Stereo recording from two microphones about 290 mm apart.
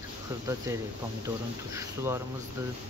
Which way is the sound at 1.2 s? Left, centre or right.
Centre.